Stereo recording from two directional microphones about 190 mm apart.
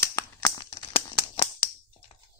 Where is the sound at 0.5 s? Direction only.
25° left (ahead or behind).